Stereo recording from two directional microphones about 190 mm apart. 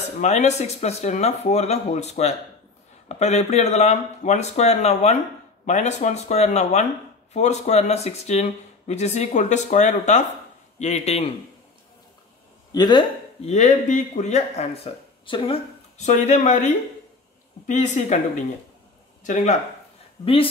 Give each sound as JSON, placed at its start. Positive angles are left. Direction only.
{"t": 0.2, "sound": "speech", "side_deg": 35}
{"t": 12.7, "sound": "speech", "side_deg": 25}
{"t": 13.5, "sound": "speech", "side_deg": 35}
{"t": 19.2, "sound": "speech", "side_deg": 40}